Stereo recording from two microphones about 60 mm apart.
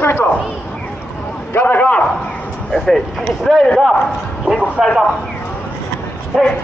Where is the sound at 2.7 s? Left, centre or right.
Centre.